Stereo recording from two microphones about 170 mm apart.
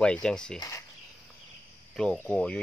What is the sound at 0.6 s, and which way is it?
Speech, 20° left (ahead or behind).